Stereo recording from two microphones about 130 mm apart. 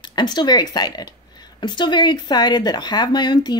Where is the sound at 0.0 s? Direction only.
35° left (ahead or behind).